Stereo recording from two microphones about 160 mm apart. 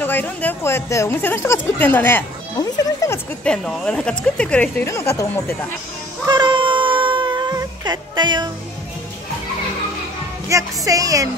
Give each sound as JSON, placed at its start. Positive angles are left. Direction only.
{"t": 0.0, "sound": "speech", "side_deg": 10}
{"t": 3.4, "sound": "speech", "side_deg": 5}
{"t": 6.2, "sound": "a sound", "side_deg": -30}
{"t": 10.5, "sound": "speech", "side_deg": -20}